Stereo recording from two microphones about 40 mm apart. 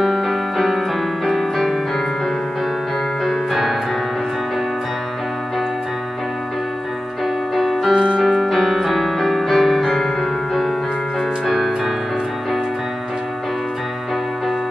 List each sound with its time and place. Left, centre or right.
0.0 s music: centre
3.3 s music: centre
7.5 s music: centre
7.9 s music: right
8.2 s music: centre